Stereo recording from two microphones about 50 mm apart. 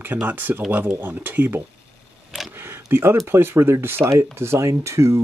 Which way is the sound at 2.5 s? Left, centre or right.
Right.